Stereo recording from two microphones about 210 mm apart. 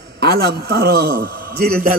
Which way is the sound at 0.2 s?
50° right (ahead or behind).